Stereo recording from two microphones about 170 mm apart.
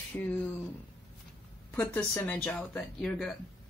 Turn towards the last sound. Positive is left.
turn(degrees=5)  # may be behind; listen again after turning